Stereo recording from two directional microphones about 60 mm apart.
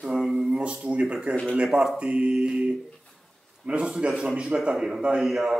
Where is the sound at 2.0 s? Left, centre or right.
Centre.